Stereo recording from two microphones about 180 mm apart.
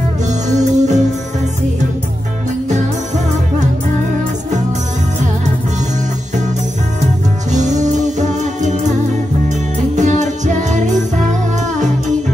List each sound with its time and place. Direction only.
0.3 s music: 40° right (ahead or behind)
7.5 s music: 40° right (ahead or behind)
9.9 s music: 40° right (ahead or behind)